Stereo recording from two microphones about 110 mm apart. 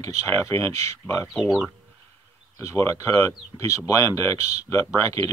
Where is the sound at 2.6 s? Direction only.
30° left (ahead or behind).